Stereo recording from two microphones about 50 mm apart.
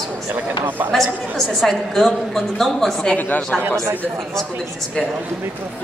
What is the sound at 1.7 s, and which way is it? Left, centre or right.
Speech, centre.